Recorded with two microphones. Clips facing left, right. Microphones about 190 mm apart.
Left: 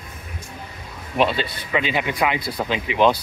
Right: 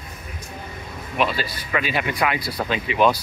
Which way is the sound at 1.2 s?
25° left (ahead or behind).